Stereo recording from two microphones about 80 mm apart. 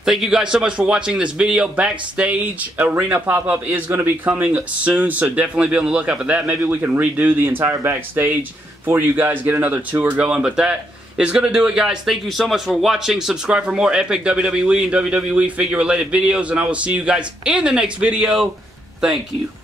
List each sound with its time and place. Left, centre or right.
0.0 s a man's voice: centre